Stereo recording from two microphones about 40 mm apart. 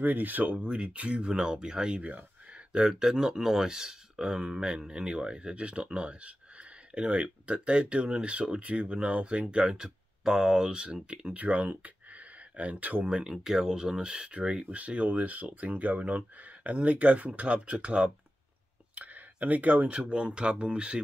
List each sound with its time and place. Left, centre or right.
0.0 s speech: right
0.7 s speech: right
2.0 s a sound: right
2.9 s speech: centre
9.8 s speech: centre
11.2 s speech: right
11.7 s a sound: right
13.1 s speech: centre
14.7 s speech: right
18.9 s a sound: right
20.0 s speech: right